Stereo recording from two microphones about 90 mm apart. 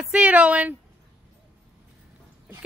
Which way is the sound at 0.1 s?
15° right (ahead or behind).